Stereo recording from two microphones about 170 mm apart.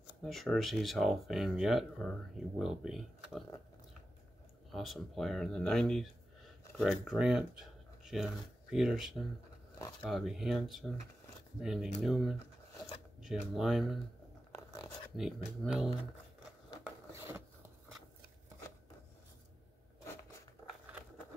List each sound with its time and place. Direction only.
0.2 s speech: centre (ahead or behind)
4.7 s speech: centre (ahead or behind)
14.5 s a sound: 20° left (ahead or behind)
15.1 s speech: 5° right (ahead or behind)
16.8 s zipper: 15° right (ahead or behind)